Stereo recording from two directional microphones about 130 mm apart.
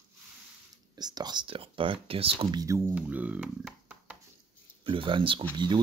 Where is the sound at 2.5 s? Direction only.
25° right (ahead or behind).